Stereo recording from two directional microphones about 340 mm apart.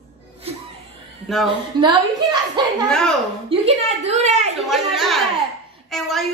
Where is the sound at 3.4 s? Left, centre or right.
Centre.